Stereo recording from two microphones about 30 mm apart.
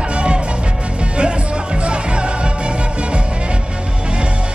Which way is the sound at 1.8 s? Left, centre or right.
Right.